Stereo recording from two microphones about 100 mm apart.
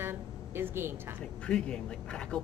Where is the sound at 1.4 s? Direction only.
10° left (ahead or behind).